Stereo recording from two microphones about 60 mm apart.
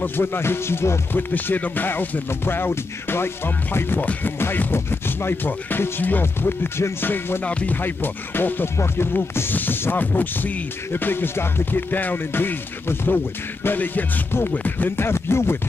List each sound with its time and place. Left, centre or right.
0.0 s music: left
1.3 s music: left
13.7 s speech: left
15.0 s music: left